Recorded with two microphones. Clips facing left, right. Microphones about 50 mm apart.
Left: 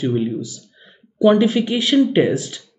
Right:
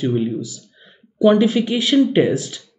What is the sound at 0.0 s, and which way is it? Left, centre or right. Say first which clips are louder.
Speech: even; centre.